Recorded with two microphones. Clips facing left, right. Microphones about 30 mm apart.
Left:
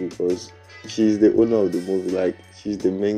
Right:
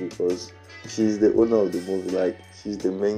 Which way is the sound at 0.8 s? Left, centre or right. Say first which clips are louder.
Left 4 dB; left.